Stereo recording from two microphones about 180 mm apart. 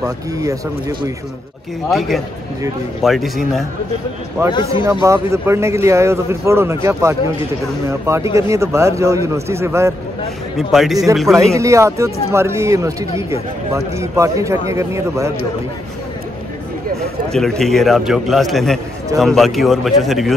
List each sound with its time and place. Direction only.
0.0 s speech: 20° right (ahead or behind)
1.9 s a man's voice: centre (ahead or behind)
4.4 s speech: 15° right (ahead or behind)
10.7 s a man's voice: centre (ahead or behind)
11.3 s speech: 15° right (ahead or behind)
17.3 s a man's voice: centre (ahead or behind)